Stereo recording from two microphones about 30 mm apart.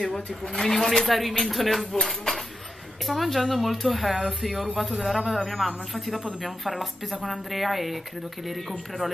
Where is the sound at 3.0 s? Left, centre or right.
Centre.